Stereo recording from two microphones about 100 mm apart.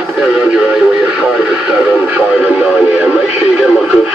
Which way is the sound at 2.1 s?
10° right (ahead or behind).